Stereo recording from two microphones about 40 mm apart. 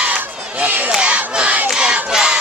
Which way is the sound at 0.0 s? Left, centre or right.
Right.